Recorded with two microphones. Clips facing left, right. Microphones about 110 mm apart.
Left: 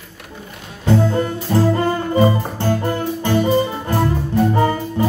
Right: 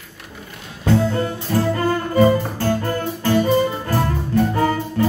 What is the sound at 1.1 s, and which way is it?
Music, 25° left (ahead or behind).